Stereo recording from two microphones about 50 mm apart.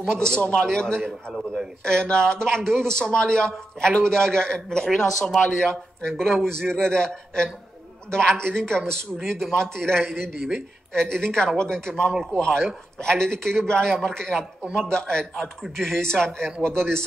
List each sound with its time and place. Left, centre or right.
0.1 s a man's voice: centre
1.3 s a man's voice: centre
1.9 s a man's voice: centre
12.1 s a man's voice: centre
12.4 s a man's voice: centre